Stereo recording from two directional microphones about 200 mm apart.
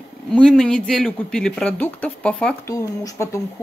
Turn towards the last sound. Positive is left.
turn(degrees=15)  # may be behind; listen again after turning